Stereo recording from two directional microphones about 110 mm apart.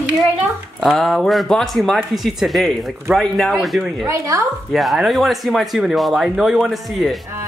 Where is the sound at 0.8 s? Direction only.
Centre (ahead or behind).